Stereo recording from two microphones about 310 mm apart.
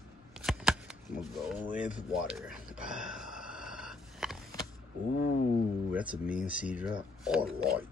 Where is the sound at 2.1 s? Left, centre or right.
Centre.